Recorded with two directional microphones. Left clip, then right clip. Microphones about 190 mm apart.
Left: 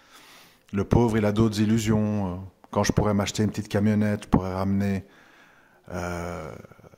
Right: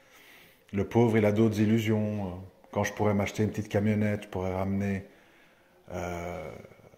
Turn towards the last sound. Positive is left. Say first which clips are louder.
# left 3 dB
turn(degrees=30)  # may be behind; listen again after turning